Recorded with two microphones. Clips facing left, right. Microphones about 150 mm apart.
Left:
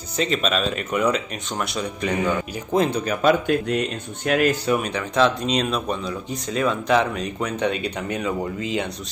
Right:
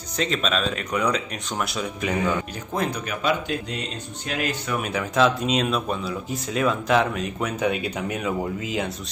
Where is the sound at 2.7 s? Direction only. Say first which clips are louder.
Left 6 dB; 25° left (ahead or behind).